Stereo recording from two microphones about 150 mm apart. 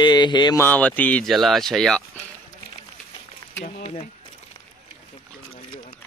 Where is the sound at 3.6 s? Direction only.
40° left (ahead or behind).